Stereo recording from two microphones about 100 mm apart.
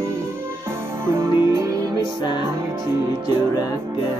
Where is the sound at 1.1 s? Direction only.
30° right (ahead or behind).